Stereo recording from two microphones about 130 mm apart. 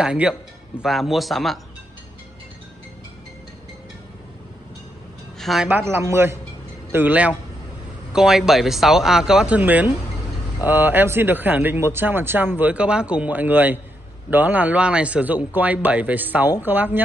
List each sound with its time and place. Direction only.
0.0 s speech: 5° right (ahead or behind)
5.4 s speech: centre (ahead or behind)
5.7 s speech: 15° right (ahead or behind)